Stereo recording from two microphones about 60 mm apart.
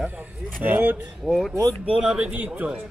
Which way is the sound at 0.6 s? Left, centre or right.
Right.